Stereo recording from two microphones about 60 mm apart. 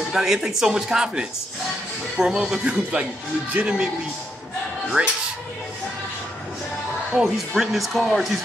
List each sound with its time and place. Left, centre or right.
0.1 s speech: centre
5.0 s speech: right
7.1 s speech: centre